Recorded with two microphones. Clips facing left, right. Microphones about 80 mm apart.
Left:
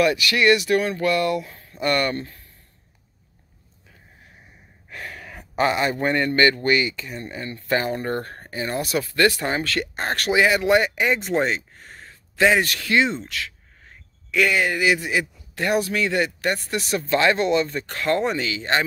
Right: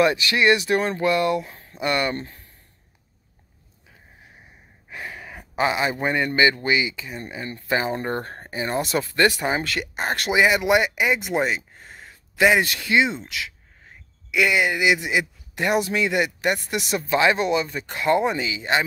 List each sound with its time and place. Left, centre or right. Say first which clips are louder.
0.0 s speech: even; right
1.8 s speech: left 1 dB; centre
2.1 s speech: left 1 dB; right
4.8 s speech: right 1 dB; centre